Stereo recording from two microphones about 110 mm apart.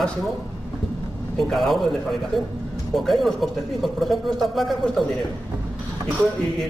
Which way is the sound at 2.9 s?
Centre (ahead or behind).